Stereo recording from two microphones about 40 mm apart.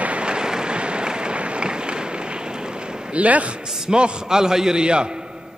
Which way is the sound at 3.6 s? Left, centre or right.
Centre.